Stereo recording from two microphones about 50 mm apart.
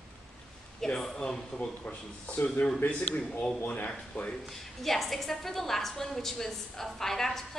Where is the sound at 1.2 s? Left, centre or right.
Left.